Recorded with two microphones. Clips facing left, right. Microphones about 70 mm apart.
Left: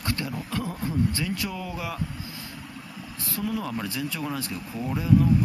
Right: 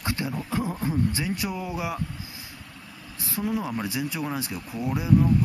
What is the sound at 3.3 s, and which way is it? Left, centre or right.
Speech, right.